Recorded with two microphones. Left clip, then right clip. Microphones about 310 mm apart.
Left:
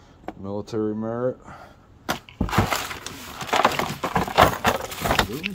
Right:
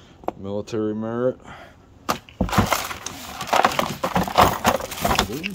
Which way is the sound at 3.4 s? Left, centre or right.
Right.